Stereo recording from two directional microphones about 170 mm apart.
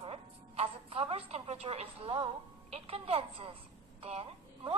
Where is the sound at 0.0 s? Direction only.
35° right (ahead or behind).